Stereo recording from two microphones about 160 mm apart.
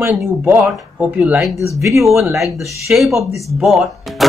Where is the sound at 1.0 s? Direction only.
5° right (ahead or behind).